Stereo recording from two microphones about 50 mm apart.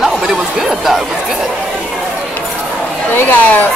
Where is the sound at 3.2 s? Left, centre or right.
Left.